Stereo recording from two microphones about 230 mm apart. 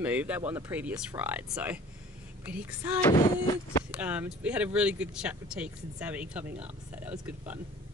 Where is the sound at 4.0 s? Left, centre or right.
Centre.